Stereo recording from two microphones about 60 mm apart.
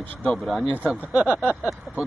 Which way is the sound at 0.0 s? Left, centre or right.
Left.